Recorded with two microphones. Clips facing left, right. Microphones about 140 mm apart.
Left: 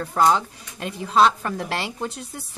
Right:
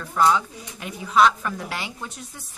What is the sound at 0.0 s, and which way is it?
A woman's voice, 35° left (ahead or behind).